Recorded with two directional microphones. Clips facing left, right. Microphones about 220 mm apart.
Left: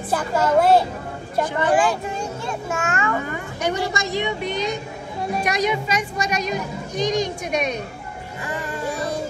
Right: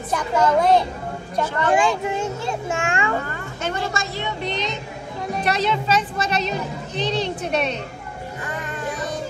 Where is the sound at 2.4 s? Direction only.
25° right (ahead or behind).